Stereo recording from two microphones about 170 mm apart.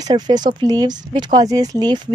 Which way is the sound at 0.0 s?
25° right (ahead or behind).